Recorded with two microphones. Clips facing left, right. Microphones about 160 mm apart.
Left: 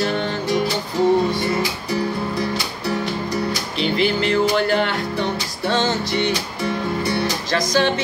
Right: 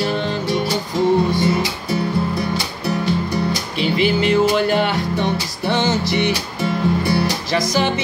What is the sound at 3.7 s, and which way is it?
Music, 15° right (ahead or behind).